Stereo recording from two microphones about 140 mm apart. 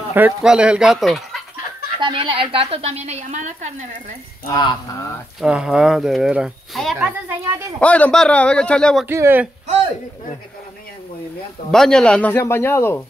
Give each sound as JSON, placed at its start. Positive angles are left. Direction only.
{"t": 0.1, "sound": "speech", "side_deg": -10}
{"t": 2.0, "sound": "a woman's voice", "side_deg": -35}
{"t": 4.5, "sound": "a sound", "side_deg": 30}
{"t": 5.4, "sound": "speech", "side_deg": -5}
{"t": 7.0, "sound": "speech", "side_deg": -10}
{"t": 7.8, "sound": "a man's voice", "side_deg": 10}
{"t": 9.0, "sound": "speech", "side_deg": -15}
{"t": 11.7, "sound": "a man's voice", "side_deg": 5}